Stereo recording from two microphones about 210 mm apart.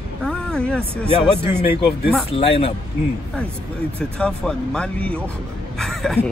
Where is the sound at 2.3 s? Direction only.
30° left (ahead or behind).